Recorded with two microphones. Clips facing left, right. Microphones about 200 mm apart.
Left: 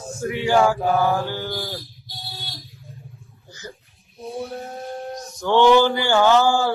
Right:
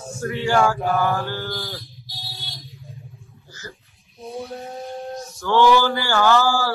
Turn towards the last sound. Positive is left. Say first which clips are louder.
# left 2 dB
turn(degrees=20)  # may be behind; listen again after turning